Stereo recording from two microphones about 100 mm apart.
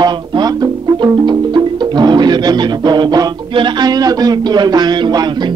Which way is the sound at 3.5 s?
40° right (ahead or behind).